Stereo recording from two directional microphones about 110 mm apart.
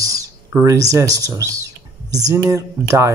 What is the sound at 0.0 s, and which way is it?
Speech, 30° right (ahead or behind).